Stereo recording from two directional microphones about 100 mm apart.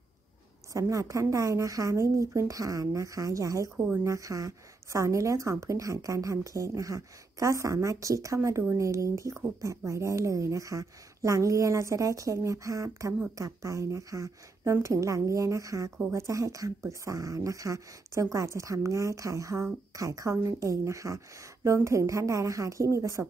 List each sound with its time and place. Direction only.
0.7 s speech: 35° right (ahead or behind)